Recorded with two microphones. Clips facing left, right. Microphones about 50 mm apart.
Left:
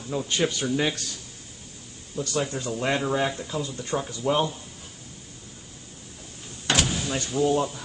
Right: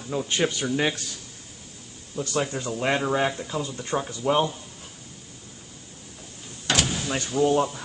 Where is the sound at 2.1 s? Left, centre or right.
Right.